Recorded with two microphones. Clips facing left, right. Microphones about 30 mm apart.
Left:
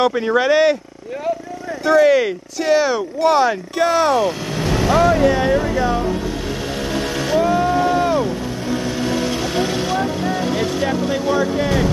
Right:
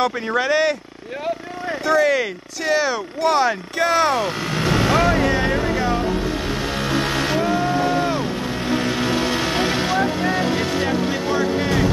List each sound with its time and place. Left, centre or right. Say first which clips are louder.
0.0 s speech: left 4 dB; centre
1.9 s speech: left 5 dB; centre
4.8 s speech: left 5 dB; right
7.1 s vehicle: left 3 dB; right
9.1 s vehicle: even; right
10.5 s speech: left 1 dB; centre